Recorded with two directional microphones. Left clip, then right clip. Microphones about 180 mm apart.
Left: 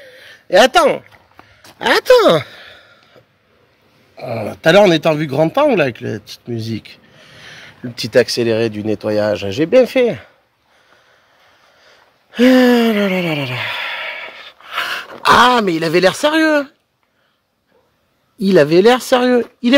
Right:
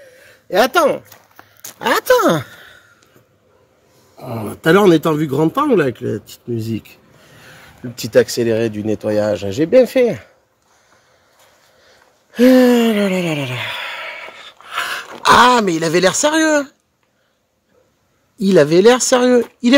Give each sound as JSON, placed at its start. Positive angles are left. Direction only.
{"t": 0.0, "sound": "a sound", "side_deg": 15}
{"t": 1.8, "sound": "speech", "side_deg": 5}
{"t": 4.2, "sound": "speech", "side_deg": 5}
{"t": 4.5, "sound": "speech", "side_deg": 20}
{"t": 7.9, "sound": "speech", "side_deg": 0}
{"t": 11.8, "sound": "a sound", "side_deg": 0}
{"t": 15.2, "sound": "speech", "side_deg": -5}
{"t": 18.4, "sound": "speech", "side_deg": 0}
{"t": 19.6, "sound": "a sound", "side_deg": -10}